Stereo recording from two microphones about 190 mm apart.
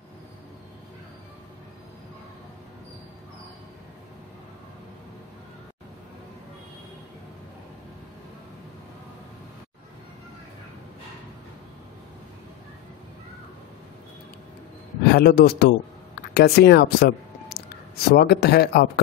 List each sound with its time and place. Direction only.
15.0 s a man's voice: 55° left (ahead or behind)